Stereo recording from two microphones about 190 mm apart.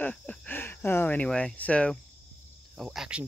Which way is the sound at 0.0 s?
10° left (ahead or behind).